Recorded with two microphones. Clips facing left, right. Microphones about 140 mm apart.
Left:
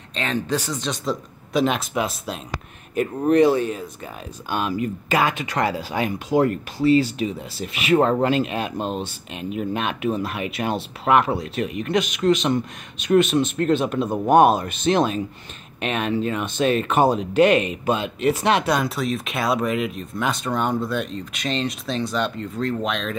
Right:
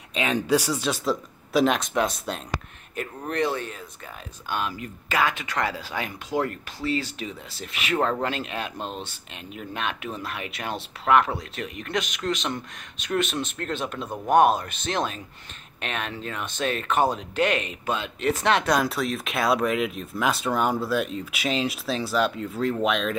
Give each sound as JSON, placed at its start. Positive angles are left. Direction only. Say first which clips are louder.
{"t": 0.1, "sound": "speech", "louder": "right 2 dB", "side_deg": -10}
{"t": 3.0, "sound": "speech", "louder": "left 10 dB", "side_deg": 15}
{"t": 7.9, "sound": "speech", "louder": "left 7 dB", "side_deg": 20}
{"t": 14.0, "sound": "speech", "louder": "left 8 dB", "side_deg": 25}
{"t": 14.3, "sound": "speech", "louder": "left 3 dB", "side_deg": 5}